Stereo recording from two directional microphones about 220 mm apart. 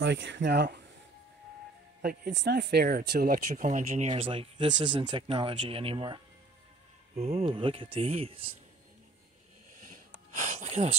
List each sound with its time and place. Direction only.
0.0 s speech: 55° right (ahead or behind)
2.0 s speech: 45° right (ahead or behind); by 8.5 s 25° right (ahead or behind)
9.8 s snort: 35° right (ahead or behind)